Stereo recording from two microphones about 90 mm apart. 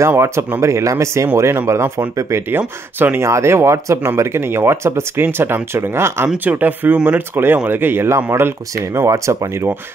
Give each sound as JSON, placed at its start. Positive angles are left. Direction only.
{"t": 0.0, "sound": "speech", "side_deg": -30}
{"t": 9.1, "sound": "speech", "side_deg": -35}